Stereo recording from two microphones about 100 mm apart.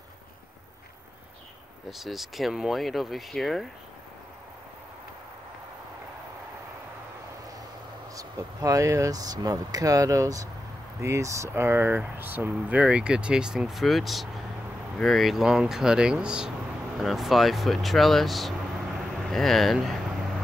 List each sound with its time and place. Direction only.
1.9 s speech: centre (ahead or behind)
8.1 s speech: 35° right (ahead or behind); by 20.2 s centre (ahead or behind)